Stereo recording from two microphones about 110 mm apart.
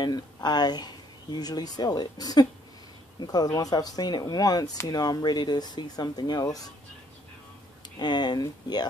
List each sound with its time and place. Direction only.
0.0 s speech: 40° left (ahead or behind)
8.0 s speech: 40° left (ahead or behind)